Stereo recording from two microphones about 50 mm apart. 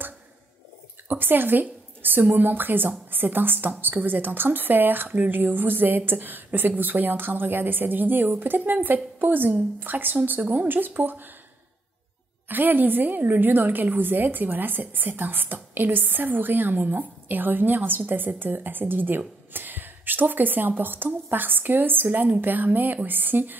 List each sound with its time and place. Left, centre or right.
1.0 s a woman's voice: right
12.4 s a woman's voice: right